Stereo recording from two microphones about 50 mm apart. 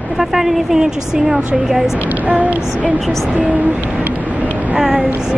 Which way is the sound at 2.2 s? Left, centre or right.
Right.